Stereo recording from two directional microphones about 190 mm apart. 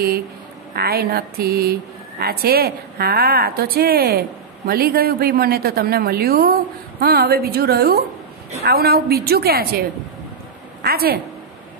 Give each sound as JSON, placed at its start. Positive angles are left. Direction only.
{"t": 0.7, "sound": "a woman's voice", "side_deg": -55}